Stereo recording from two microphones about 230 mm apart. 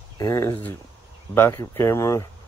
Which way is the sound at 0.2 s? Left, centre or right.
Centre.